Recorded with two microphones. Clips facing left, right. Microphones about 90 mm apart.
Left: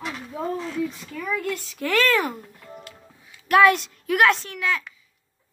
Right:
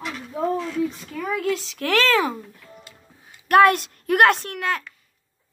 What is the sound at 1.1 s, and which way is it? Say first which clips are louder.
A woman's voice: right 3 dB; 80° right.